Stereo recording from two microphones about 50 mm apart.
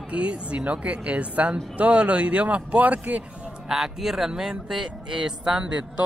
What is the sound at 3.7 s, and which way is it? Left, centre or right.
Speech, centre.